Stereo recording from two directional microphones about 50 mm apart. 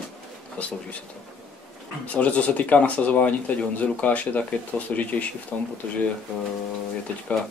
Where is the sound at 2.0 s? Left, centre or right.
Left.